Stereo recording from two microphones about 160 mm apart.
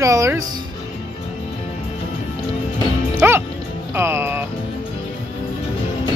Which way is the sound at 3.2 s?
15° right (ahead or behind).